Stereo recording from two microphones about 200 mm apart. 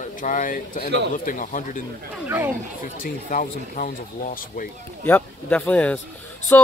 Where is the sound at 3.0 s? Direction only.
40° left (ahead or behind).